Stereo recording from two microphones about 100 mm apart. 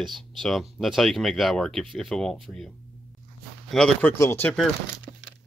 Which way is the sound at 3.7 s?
5° left (ahead or behind).